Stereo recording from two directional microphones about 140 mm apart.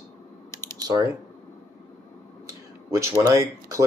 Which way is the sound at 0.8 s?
25° right (ahead or behind).